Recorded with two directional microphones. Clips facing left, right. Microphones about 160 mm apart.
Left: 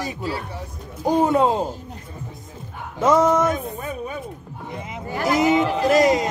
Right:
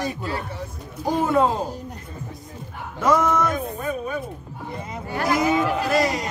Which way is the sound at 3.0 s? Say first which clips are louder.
Left 3 dB; 20° left (ahead or behind).